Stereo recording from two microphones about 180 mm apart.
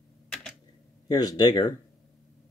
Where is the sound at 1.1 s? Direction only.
20° left (ahead or behind).